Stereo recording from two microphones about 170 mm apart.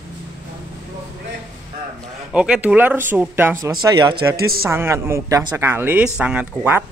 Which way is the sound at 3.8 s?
25° right (ahead or behind).